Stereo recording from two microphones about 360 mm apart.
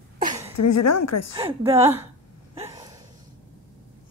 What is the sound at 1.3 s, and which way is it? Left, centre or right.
Speech, centre.